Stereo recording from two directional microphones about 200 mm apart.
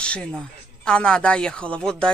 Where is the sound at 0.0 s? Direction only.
5° left (ahead or behind).